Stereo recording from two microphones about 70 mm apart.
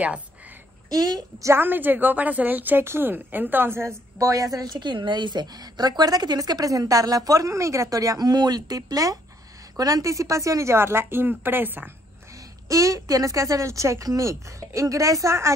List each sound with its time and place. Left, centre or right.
0.8 s a woman's voice: right
1.5 s a woman's voice: right
4.7 s a woman's voice: right
12.6 s speech: right